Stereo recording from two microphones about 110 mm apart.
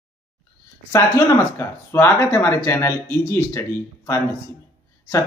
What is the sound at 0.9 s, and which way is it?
Speech, 35° left (ahead or behind).